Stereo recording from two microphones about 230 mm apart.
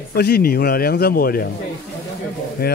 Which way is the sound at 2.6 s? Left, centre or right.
Left.